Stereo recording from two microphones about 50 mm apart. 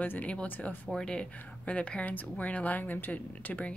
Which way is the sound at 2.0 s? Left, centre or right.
Left.